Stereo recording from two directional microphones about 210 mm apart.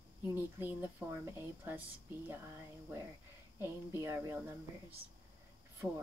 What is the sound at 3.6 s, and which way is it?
Speech, 10° right (ahead or behind).